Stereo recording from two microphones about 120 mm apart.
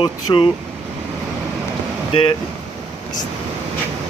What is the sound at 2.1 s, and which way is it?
Speech, 45° left (ahead or behind).